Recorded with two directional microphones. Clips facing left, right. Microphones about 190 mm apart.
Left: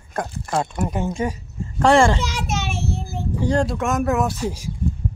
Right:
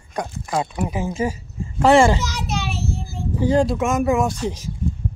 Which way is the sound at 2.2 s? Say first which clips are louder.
Even; 55° left (ahead or behind).